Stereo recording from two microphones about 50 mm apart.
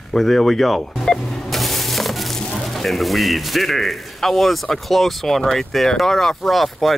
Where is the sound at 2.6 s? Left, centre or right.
Centre.